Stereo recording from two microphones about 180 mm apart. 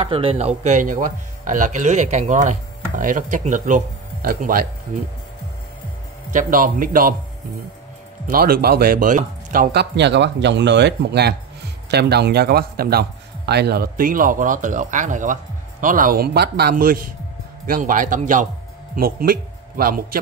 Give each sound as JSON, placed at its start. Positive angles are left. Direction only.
{"t": 0.0, "sound": "speech", "side_deg": -30}
{"t": 6.3, "sound": "speech", "side_deg": -50}
{"t": 8.3, "sound": "a man's voice", "side_deg": -55}